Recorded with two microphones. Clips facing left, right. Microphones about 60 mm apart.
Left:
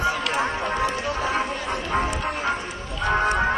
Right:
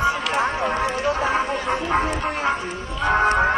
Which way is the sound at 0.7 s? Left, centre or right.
Right.